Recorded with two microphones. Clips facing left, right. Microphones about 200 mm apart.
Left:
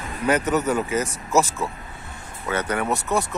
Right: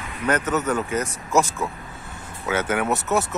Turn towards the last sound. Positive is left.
turn(degrees=-5)  # may be behind; listen again after turning